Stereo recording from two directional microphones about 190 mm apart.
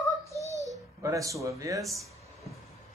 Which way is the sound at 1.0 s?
15° right (ahead or behind).